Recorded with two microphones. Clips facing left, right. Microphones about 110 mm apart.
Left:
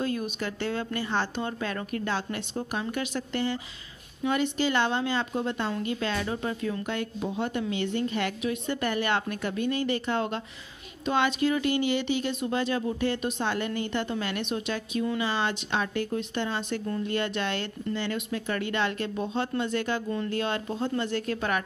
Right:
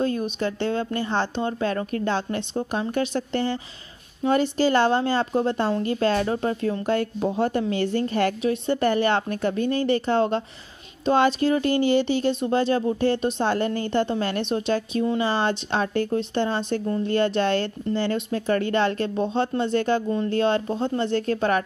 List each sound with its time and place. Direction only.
0.0 s speech: 30° right (ahead or behind)